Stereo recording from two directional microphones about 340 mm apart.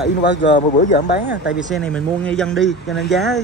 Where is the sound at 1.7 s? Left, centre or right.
Centre.